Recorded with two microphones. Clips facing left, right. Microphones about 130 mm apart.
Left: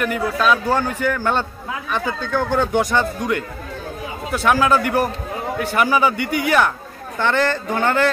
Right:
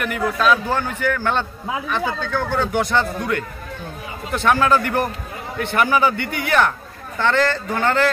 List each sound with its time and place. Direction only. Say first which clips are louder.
0.4 s a man's voice: left 1 dB; 10° left (ahead or behind)